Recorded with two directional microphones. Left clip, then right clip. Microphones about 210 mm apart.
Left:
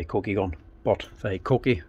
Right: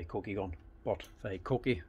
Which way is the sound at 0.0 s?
40° left (ahead or behind).